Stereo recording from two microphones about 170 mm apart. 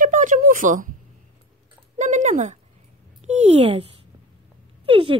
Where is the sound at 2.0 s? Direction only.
45° right (ahead or behind).